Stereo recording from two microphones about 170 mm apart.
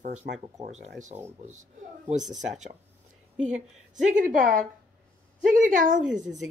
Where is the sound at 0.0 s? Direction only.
45° right (ahead or behind).